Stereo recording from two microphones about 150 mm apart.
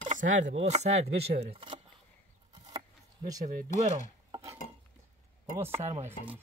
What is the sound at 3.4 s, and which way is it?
Speech, 70° right (ahead or behind).